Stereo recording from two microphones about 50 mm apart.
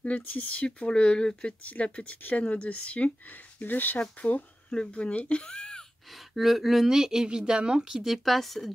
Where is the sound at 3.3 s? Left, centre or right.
Left.